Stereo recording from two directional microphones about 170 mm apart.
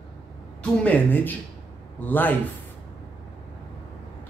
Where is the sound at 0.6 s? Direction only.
10° left (ahead or behind).